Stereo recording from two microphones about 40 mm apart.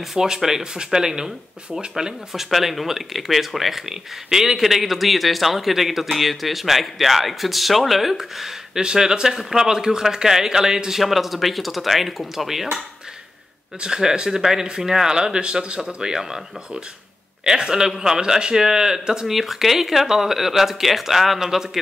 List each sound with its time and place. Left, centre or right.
0.0 s speech: centre
2.3 s speech: centre
4.6 s speech: centre
8.8 s speech: centre
13.7 s speech: centre
17.5 s speech: centre